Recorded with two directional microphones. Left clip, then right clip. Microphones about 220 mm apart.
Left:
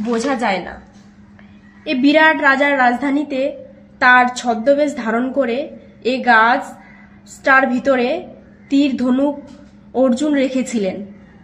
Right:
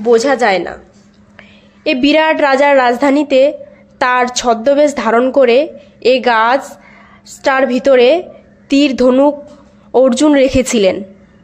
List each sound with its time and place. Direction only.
0.1 s a woman's voice: 45° right (ahead or behind)
1.9 s a woman's voice: 50° right (ahead or behind)